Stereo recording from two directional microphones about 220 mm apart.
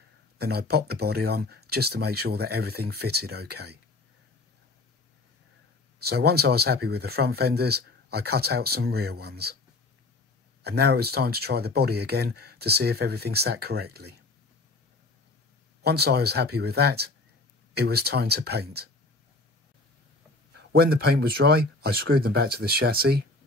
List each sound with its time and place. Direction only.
0.4 s speech: 45° right (ahead or behind)
6.0 s speech: 45° right (ahead or behind)
10.6 s speech: 45° right (ahead or behind)
15.8 s speech: 45° right (ahead or behind)
21.1 s speech: 45° right (ahead or behind)